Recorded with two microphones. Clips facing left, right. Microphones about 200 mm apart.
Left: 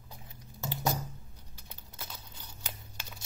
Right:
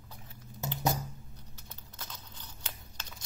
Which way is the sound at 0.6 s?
20° right (ahead or behind).